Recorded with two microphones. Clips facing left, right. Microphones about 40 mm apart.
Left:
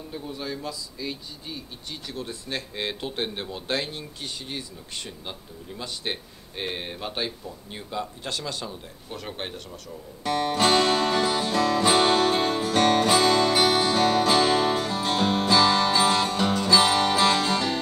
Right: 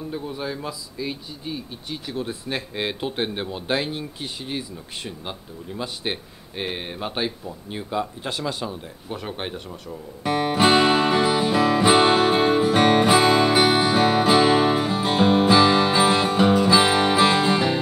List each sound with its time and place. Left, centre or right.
0.1 s speech: centre
10.2 s music: centre